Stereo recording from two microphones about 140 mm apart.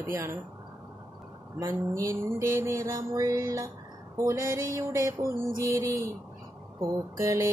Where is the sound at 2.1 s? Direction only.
20° right (ahead or behind).